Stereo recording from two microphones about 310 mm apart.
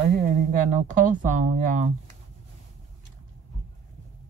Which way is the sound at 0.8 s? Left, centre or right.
Right.